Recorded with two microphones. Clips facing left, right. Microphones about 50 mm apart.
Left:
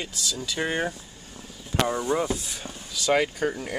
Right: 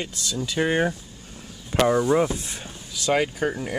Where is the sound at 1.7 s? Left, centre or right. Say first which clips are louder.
Right 4 dB; right.